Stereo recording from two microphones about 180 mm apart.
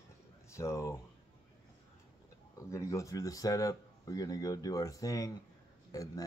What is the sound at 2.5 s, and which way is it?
Speech, 15° left (ahead or behind).